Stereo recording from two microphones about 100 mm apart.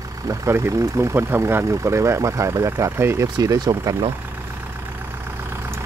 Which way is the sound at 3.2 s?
40° right (ahead or behind).